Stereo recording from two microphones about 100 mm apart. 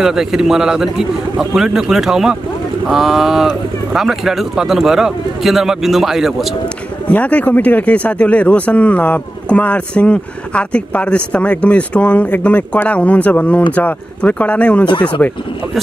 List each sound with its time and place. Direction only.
0.0 s speech: 5° right (ahead or behind)
7.1 s speech: 15° left (ahead or behind)